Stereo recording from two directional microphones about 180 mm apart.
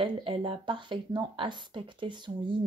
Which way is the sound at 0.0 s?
30° right (ahead or behind).